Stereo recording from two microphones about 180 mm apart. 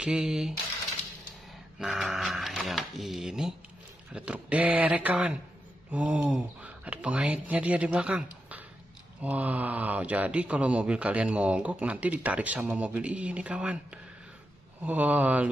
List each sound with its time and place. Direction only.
0.0 s speech: 5° right (ahead or behind)
1.8 s speech: 5° right (ahead or behind)